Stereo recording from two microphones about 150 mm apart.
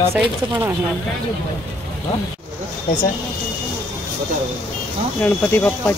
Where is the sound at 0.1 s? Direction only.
15° right (ahead or behind).